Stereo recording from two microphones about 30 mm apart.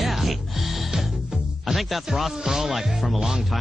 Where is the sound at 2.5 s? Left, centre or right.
Centre.